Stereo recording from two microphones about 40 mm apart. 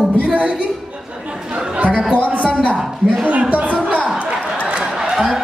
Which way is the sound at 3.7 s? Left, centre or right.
Right.